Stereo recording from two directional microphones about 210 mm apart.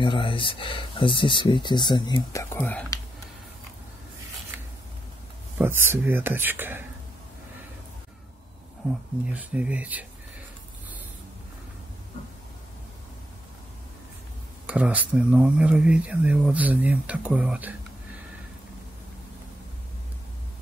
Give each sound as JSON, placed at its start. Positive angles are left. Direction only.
{"t": 0.0, "sound": "speech", "side_deg": 25}
{"t": 2.5, "sound": "speech", "side_deg": 10}
{"t": 5.6, "sound": "speech", "side_deg": -10}
{"t": 9.2, "sound": "speech", "side_deg": -5}
{"t": 14.7, "sound": "speech", "side_deg": -5}